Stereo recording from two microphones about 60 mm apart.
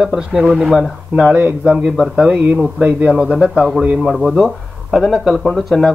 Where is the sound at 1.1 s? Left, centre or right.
Centre.